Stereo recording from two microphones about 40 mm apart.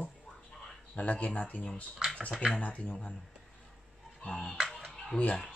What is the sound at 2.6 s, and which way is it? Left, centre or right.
Speech, left.